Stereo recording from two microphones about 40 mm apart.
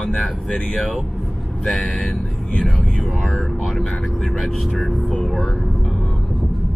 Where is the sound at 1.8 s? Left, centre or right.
Centre.